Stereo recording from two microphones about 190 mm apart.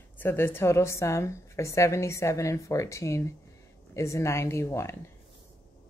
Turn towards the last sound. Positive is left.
turn(degrees=15)  # may be behind; listen again after turning